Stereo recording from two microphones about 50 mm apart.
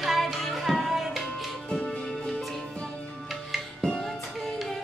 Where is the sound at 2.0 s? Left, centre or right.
Centre.